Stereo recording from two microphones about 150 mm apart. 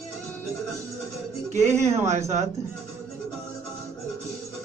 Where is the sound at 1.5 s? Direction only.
50° right (ahead or behind).